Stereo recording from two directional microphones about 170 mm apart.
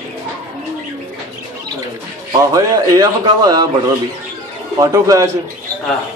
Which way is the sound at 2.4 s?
20° right (ahead or behind).